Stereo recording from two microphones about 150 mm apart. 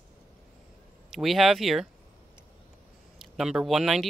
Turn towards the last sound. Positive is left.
turn(degrees=0)  # may be behind; listen again after turning